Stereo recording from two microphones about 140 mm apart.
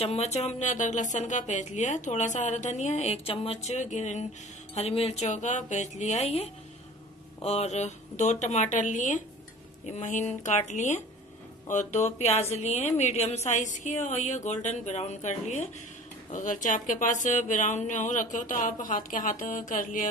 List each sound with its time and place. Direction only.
0.0 s speech: 50° left (ahead or behind)
4.7 s a woman's voice: 45° left (ahead or behind); by 20.1 s 70° left (ahead or behind)